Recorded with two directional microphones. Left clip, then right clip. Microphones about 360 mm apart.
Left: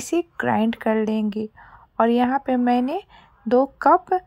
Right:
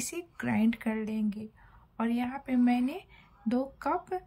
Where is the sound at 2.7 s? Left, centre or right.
Centre.